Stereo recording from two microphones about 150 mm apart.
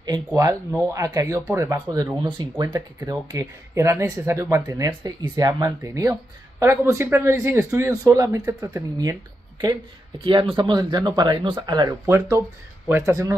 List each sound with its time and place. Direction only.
0.0 s speech: 25° right (ahead or behind)
10.2 s speech: 35° right (ahead or behind); by 13.4 s 20° right (ahead or behind)